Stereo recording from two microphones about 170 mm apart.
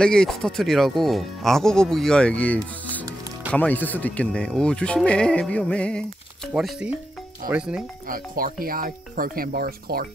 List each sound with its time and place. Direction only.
0.0 s speech: 5° left (ahead or behind)
8.1 s speech: 55° right (ahead or behind)